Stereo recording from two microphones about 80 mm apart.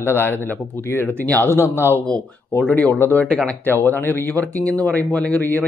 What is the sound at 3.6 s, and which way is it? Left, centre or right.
A man's voice, left.